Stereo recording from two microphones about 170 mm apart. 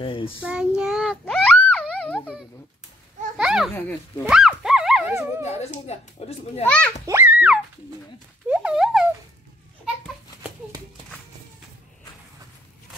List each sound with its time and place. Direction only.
0.0 s a child's voice: 30° left (ahead or behind)
0.5 s child singing: 5° right (ahead or behind)
1.2 s a sound: 5° left (ahead or behind)
2.0 s dog: 5° left (ahead or behind)
3.3 s a child's voice: 5° right (ahead or behind)
4.2 s dog: 5° right (ahead or behind)
5.4 s a child's voice: 40° left (ahead or behind)
6.6 s a child's voice: 5° left (ahead or behind)
7.1 s music: 10° right (ahead or behind)
8.5 s a sound: 5° right (ahead or behind)